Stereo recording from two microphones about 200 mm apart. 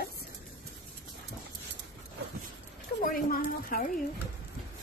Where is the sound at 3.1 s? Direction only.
45° left (ahead or behind).